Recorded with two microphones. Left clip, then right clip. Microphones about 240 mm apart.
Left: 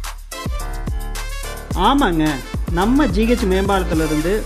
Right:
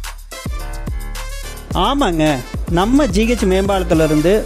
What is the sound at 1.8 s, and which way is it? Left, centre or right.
Speech, right.